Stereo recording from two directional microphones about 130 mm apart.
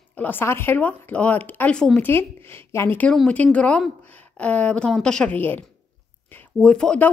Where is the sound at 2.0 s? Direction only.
15° left (ahead or behind).